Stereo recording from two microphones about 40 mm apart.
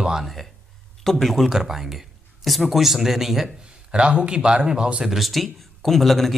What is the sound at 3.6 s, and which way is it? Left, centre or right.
A man's voice, right.